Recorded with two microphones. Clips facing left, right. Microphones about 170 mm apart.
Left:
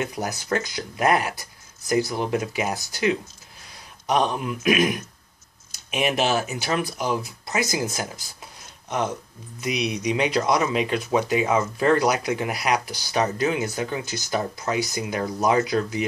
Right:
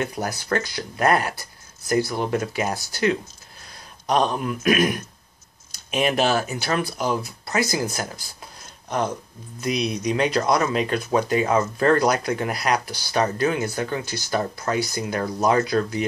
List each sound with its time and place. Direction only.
0.0 s speech: 15° left (ahead or behind)
9.6 s speech: 10° left (ahead or behind)